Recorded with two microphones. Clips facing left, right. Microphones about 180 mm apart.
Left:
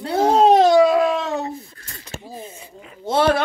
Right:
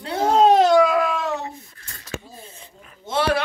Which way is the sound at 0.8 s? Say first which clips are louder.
Left 3 dB; 30° left (ahead or behind).